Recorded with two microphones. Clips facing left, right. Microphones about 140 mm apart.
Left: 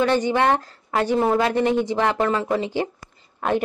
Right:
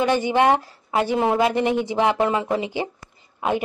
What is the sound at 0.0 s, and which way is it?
A woman's voice, 15° right (ahead or behind).